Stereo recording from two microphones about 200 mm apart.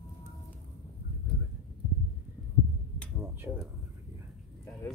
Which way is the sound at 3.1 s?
10° right (ahead or behind).